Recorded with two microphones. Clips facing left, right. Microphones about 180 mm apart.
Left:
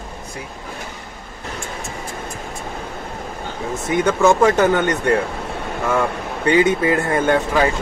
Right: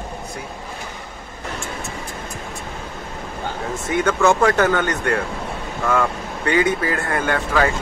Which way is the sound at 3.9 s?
15° left (ahead or behind).